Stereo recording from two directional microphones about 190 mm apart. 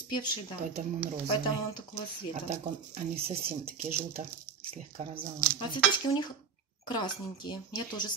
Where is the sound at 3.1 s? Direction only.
30° right (ahead or behind).